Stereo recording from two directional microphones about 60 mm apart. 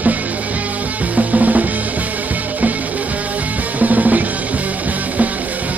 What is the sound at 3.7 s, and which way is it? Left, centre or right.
Music, right.